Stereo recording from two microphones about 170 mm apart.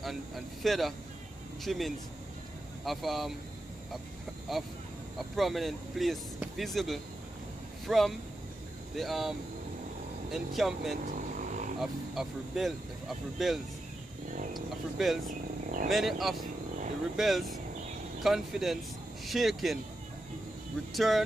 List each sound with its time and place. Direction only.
0.0 s speech: centre (ahead or behind)
5.3 s speech: centre (ahead or behind)
10.3 s speech: centre (ahead or behind)
11.3 s vehicle: 50° right (ahead or behind)
11.8 s speech: centre (ahead or behind)
15.2 s speech: 50° right (ahead or behind)
15.9 s speech: centre (ahead or behind)
20.9 s speech: centre (ahead or behind)